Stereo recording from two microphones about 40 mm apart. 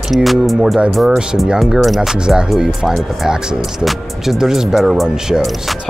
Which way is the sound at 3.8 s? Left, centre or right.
Centre.